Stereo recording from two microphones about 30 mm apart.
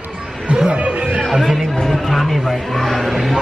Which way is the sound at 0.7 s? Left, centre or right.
Right.